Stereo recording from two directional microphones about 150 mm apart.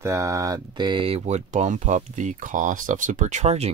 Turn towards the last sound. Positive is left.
turn(degrees=-45)  # may be behind; listen again after turning